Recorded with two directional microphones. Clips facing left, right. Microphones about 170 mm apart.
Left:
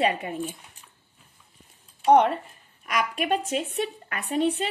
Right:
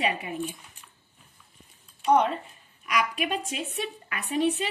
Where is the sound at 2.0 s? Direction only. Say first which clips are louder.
Left 4 dB; 60° left (ahead or behind).